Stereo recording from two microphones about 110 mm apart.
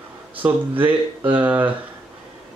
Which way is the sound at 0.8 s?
15° right (ahead or behind).